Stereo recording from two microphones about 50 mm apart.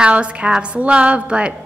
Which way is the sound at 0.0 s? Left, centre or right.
Right.